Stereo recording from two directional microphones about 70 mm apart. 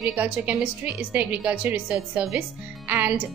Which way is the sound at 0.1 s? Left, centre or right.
Centre.